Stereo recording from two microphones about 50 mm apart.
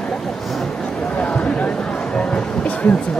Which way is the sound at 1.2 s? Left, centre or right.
Left.